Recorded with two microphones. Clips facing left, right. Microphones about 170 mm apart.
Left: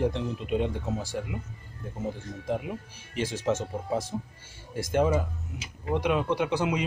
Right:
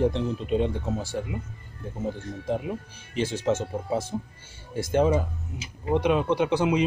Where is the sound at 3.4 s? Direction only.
20° right (ahead or behind).